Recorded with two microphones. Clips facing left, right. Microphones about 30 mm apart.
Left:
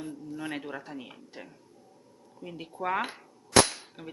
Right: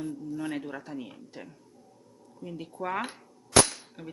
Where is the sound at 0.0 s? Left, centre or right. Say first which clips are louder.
Right 3 dB; centre.